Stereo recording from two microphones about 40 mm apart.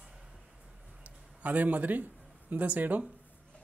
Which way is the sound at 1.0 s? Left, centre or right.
Right.